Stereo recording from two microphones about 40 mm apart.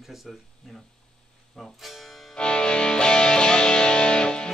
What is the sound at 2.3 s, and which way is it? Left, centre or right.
Music, left.